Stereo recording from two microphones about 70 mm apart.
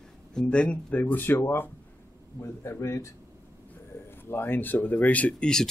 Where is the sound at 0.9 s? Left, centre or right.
Left.